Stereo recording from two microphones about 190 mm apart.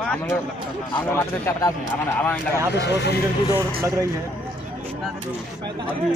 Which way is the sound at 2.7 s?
60° left (ahead or behind).